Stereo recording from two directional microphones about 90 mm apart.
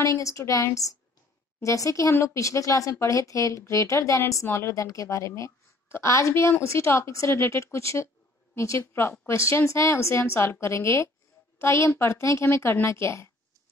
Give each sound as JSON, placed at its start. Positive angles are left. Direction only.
{"t": 0.0, "sound": "a woman's voice", "side_deg": 35}